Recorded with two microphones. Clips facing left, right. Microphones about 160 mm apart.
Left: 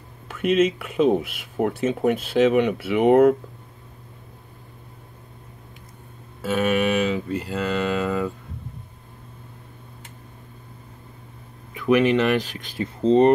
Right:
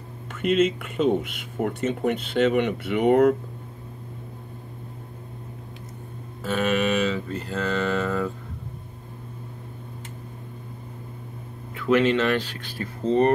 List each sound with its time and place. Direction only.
0.3 s speech: 5° left (ahead or behind)
6.4 s speech: 10° left (ahead or behind)
11.7 s speech: 15° left (ahead or behind)